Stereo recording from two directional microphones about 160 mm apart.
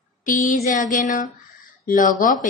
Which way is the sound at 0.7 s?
55° left (ahead or behind).